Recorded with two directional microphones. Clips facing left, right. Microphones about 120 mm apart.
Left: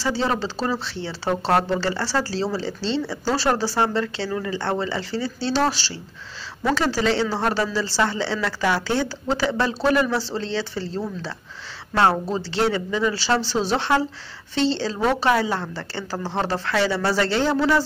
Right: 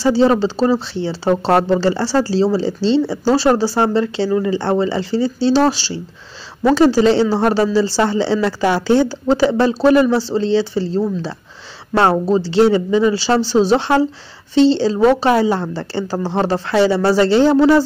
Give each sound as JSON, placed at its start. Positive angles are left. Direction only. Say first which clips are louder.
{"t": 0.0, "sound": "speech", "louder": "right 10 dB", "side_deg": -25}